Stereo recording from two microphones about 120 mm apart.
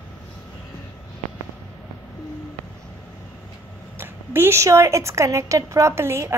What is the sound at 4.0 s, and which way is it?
A woman's voice, 20° right (ahead or behind).